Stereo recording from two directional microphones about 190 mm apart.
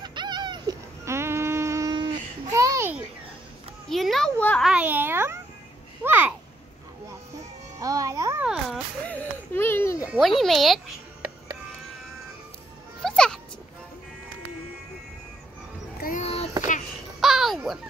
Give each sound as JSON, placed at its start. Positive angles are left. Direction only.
{"t": 0.0, "sound": "a sound", "side_deg": -25}
{"t": 3.9, "sound": "a child's voice", "side_deg": 0}
{"t": 4.6, "sound": "a child's voice", "side_deg": -10}
{"t": 6.0, "sound": "a sound", "side_deg": -10}
{"t": 7.8, "sound": "music", "side_deg": -15}
{"t": 8.5, "sound": "a sound", "side_deg": 0}
{"t": 10.0, "sound": "a child's voice", "side_deg": 0}
{"t": 13.0, "sound": "music", "side_deg": 5}
{"t": 16.0, "sound": "vehicle", "side_deg": 45}
{"t": 17.2, "sound": "babbling", "side_deg": 0}